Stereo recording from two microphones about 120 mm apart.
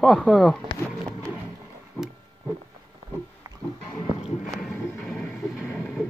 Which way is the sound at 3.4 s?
30° right (ahead or behind).